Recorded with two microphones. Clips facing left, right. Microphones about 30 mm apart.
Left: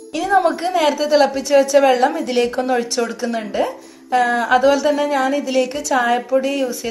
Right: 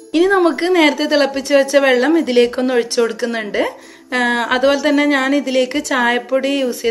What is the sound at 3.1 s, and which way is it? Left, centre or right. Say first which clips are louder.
Speech: right 2 dB; right.